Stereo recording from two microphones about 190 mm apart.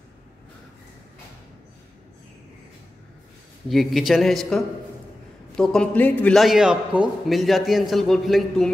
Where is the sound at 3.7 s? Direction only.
Centre (ahead or behind).